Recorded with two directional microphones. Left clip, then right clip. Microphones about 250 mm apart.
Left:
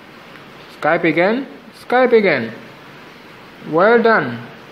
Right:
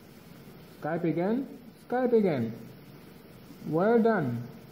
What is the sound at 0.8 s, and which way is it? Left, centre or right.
Speech, centre.